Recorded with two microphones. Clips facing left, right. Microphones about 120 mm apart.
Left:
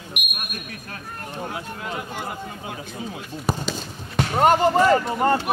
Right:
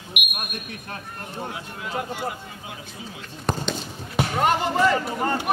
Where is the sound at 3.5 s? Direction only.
5° left (ahead or behind).